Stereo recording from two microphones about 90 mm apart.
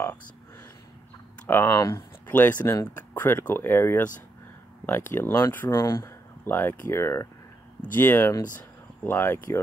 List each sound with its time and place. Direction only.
1.7 s speech: 35° left (ahead or behind)
2.2 s speech: 20° left (ahead or behind)